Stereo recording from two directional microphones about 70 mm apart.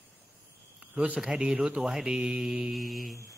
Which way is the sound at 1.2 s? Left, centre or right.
Centre.